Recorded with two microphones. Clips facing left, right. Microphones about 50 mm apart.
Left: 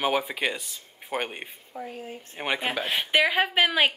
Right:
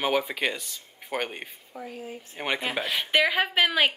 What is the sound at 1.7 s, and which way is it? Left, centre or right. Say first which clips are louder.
Speech: left 1 dB; left.